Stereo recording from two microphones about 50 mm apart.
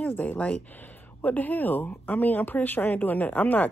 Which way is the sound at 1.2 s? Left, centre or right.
Left.